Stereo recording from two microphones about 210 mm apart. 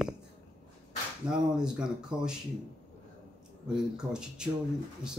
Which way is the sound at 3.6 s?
5° right (ahead or behind).